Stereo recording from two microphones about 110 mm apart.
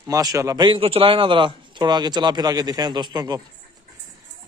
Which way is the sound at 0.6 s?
50° right (ahead or behind).